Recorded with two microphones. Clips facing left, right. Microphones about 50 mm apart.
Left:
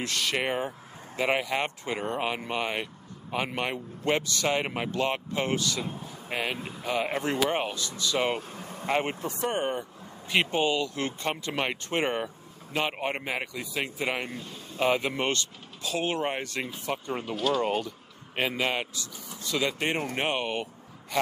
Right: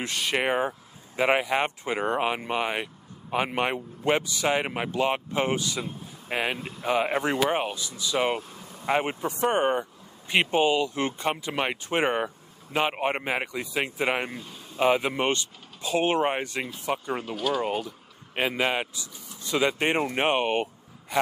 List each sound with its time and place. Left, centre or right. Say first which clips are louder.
0.0 s speech: right 2 dB; centre
8.4 s vehicle: left 2 dB; left
8.8 s speech: right 2 dB; centre
9.4 s speech: right 6 dB; right
14.3 s a man's voice: even; centre